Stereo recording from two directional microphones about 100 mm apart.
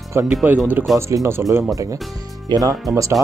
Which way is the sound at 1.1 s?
30° right (ahead or behind).